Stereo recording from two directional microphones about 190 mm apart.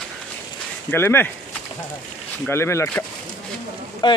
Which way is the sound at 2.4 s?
15° left (ahead or behind).